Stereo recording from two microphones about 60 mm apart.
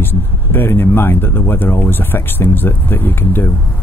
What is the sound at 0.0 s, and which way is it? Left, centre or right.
Speech, left.